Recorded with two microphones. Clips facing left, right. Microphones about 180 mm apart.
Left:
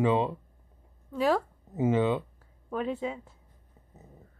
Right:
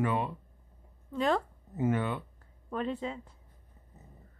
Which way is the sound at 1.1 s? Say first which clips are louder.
Left 3 dB; 5° left (ahead or behind).